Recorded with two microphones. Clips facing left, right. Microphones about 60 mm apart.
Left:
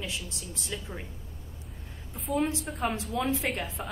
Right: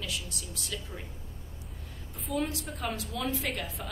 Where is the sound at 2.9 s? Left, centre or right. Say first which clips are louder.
Left 4 dB; left.